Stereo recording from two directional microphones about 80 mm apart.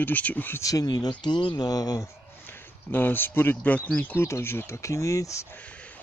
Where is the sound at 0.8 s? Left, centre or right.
Left.